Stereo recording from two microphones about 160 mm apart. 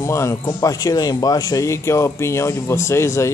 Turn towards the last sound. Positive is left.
turn(degrees=15)  # may be behind; listen again after turning